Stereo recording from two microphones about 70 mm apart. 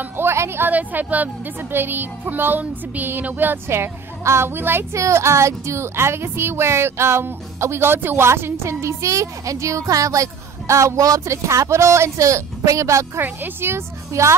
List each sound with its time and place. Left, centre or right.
0.0 s a woman's voice: right
2.6 s music: right
4.9 s speech: right
13.2 s music: right